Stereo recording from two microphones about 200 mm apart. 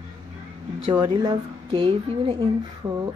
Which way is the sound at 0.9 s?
20° right (ahead or behind).